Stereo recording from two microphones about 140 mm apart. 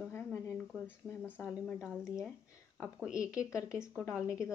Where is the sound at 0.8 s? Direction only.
10° right (ahead or behind).